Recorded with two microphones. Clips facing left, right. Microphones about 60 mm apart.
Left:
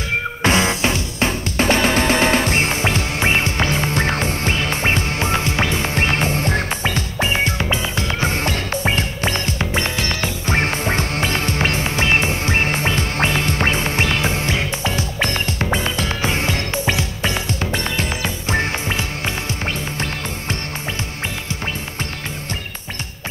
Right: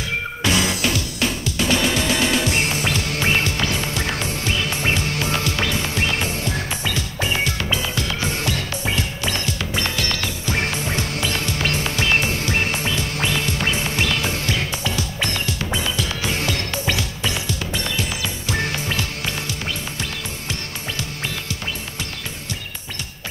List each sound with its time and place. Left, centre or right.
0.4 s music: left
10.4 s music: left